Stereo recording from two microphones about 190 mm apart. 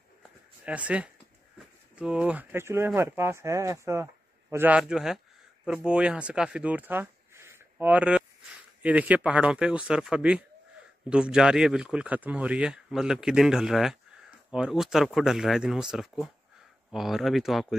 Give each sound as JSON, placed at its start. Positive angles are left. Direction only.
{"t": 0.7, "sound": "speech", "side_deg": -5}